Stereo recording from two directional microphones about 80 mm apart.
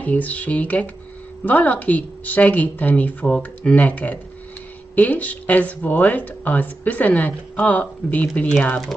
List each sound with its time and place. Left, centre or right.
0.0 s speech: centre